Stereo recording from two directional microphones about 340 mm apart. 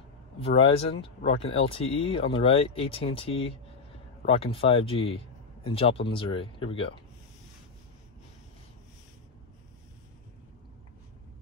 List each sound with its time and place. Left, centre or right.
0.4 s speech: centre